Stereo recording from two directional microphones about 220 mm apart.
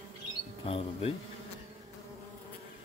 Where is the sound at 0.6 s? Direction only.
25° left (ahead or behind).